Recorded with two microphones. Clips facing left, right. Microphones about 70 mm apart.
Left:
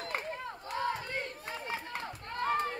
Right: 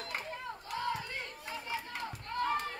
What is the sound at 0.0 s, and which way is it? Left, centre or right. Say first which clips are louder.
Run: left 3 dB; left.